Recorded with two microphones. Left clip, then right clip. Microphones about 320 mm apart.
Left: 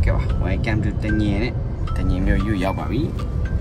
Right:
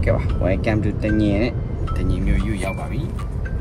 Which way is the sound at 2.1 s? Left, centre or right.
Left.